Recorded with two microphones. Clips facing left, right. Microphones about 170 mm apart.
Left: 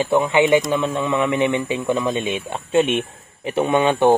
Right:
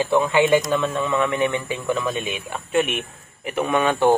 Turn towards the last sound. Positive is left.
turn(degrees=25)  # may be behind; listen again after turning